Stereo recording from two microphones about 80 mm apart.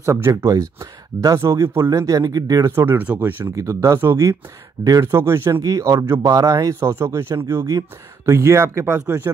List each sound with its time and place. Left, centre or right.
0.0 s speech: right
0.3 s speech: right
1.4 s speech: right
1.9 s speech: right
2.7 s speech: right
3.5 s speech: right
5.0 s speech: right
5.6 s speech: right